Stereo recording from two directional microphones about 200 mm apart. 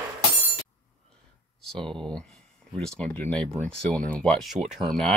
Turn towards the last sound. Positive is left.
turn(degrees=0)  # may be behind; listen again after turning